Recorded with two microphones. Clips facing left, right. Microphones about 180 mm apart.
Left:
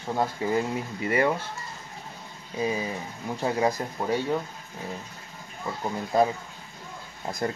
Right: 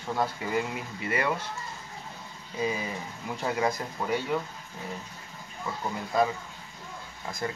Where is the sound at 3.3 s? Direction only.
25° left (ahead or behind).